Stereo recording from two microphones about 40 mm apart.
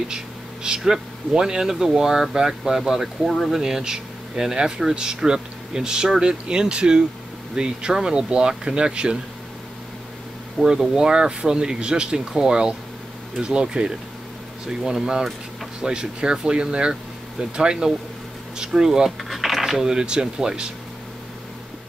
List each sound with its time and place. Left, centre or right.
0.7 s speech: centre
10.6 s speech: centre
19.0 s speech: centre; by 20.7 s right